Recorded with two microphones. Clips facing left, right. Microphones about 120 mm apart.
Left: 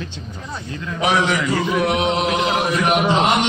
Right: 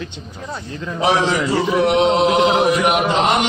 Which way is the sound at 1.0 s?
30° right (ahead or behind).